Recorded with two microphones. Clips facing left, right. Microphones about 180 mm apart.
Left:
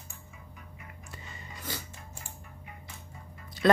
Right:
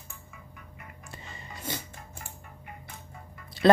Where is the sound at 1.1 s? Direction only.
25° right (ahead or behind).